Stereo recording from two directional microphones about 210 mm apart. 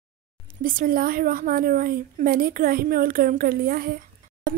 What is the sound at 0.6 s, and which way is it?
A woman's voice, 40° right (ahead or behind).